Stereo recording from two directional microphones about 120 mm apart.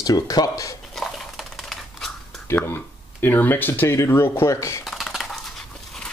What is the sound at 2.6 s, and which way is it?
Speech, 15° left (ahead or behind).